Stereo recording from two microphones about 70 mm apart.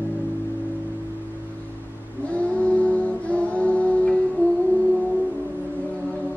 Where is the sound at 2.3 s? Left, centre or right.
Centre.